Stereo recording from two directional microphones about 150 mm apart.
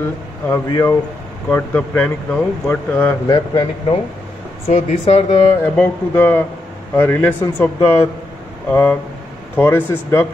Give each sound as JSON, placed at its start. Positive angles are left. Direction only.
{"t": 0.5, "sound": "speech", "side_deg": 20}
{"t": 3.3, "sound": "a man's voice", "side_deg": 30}
{"t": 5.0, "sound": "a man's voice", "side_deg": 35}
{"t": 5.5, "sound": "speech", "side_deg": 10}